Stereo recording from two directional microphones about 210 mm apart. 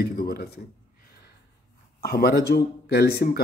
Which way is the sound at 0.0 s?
45° left (ahead or behind).